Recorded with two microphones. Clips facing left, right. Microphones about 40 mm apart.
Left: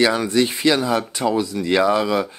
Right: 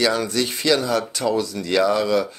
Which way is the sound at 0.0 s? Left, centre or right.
Centre.